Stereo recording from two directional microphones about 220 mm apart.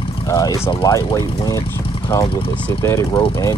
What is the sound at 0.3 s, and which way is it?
Speech, 15° left (ahead or behind).